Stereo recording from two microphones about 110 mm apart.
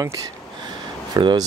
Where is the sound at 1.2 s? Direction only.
45° right (ahead or behind).